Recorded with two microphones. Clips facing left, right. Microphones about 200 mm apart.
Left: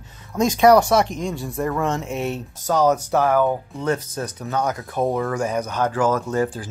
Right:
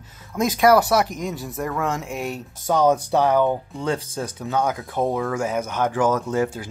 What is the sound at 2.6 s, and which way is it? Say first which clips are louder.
Speech: even; 15° right (ahead or behind).